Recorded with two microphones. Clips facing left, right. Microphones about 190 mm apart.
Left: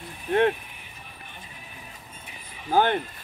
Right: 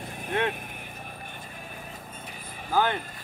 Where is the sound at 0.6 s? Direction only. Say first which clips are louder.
Right 6 dB; 50° right (ahead or behind).